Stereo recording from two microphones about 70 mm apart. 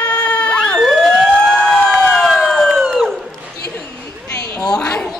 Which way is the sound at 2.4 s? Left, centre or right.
Centre.